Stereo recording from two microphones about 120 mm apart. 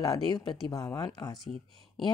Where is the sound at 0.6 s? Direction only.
30° left (ahead or behind).